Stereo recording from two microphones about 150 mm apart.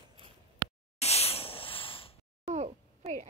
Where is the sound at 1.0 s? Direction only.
45° left (ahead or behind).